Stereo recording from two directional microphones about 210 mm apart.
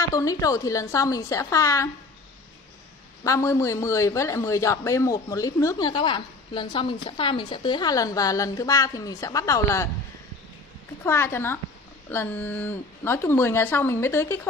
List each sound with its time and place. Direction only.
0.1 s a man's voice: 15° left (ahead or behind)
3.3 s a man's voice: 15° left (ahead or behind)
11.1 s a man's voice: 10° left (ahead or behind)